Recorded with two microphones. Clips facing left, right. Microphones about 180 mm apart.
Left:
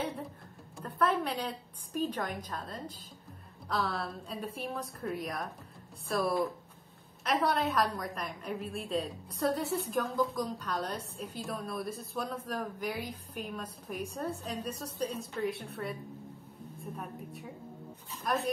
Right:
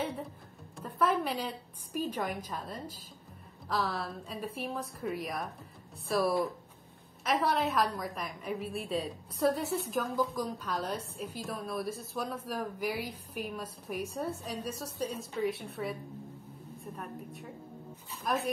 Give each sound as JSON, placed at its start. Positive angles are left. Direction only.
{"t": 0.7, "sound": "a woman's voice", "side_deg": 0}